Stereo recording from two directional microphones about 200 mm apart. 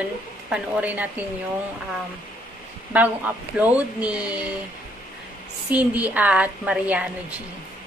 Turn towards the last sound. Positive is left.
turn(degrees=-5)  # may be behind; listen again after turning